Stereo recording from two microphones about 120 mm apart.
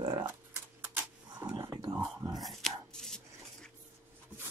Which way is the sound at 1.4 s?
30° right (ahead or behind).